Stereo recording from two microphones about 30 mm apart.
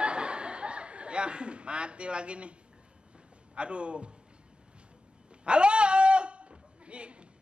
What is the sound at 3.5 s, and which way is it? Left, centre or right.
Speech, right.